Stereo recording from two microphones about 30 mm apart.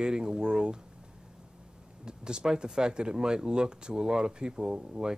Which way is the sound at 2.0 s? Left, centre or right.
Right.